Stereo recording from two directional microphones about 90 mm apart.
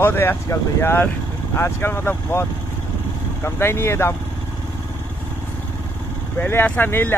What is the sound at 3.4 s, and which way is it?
Speech, 30° left (ahead or behind).